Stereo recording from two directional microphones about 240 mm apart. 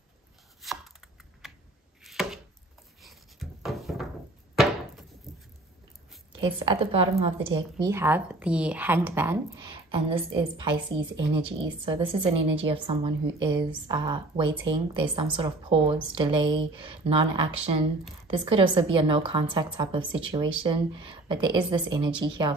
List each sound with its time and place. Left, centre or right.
0.6 s chopping: centre
2.0 s chopping: centre
3.0 s a sound: centre
5.3 s a sound: centre
6.4 s a woman's voice: right
7.8 s a woman's voice: centre
9.8 s a woman's voice: right